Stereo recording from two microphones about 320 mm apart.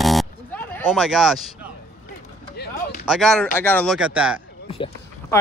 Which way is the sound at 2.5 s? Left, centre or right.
Left.